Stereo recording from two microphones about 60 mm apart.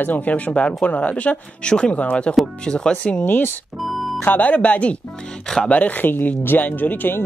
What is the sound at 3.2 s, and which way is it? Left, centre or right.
Speech, left.